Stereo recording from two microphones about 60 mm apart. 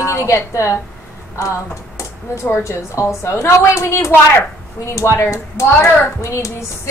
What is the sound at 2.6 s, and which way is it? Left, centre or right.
A woman's voice, left.